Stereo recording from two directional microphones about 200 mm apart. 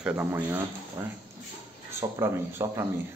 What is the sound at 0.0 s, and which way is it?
Speech, 10° right (ahead or behind).